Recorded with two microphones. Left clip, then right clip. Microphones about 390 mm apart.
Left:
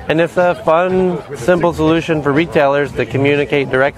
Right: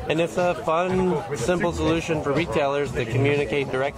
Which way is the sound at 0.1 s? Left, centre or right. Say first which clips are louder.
Left 9 dB; left.